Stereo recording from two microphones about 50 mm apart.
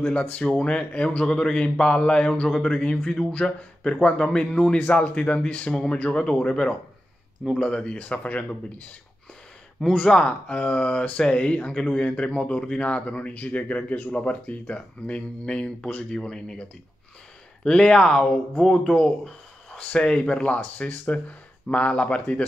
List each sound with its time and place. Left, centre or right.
0.0 s speech: left
10.0 s speech: centre
17.6 s speech: centre